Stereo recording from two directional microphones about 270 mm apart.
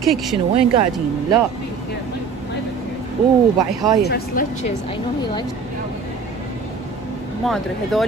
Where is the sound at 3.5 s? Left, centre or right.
Centre.